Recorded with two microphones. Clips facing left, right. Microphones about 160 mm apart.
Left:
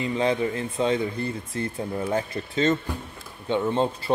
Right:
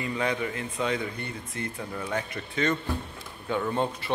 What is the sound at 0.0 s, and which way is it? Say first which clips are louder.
Speech: left 5 dB; 25° left (ahead or behind).